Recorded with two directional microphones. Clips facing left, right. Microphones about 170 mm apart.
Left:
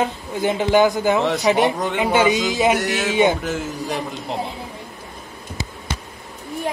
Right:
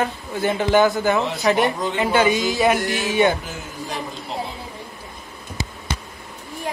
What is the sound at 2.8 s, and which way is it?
Speech, 75° left (ahead or behind).